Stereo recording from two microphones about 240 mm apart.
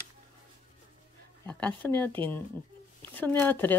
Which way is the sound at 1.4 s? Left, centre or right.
Centre.